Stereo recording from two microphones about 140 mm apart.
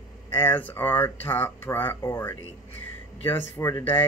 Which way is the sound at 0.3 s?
15° left (ahead or behind).